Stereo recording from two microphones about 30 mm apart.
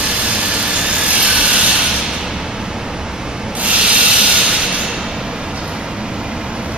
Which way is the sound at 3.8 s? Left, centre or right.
Right.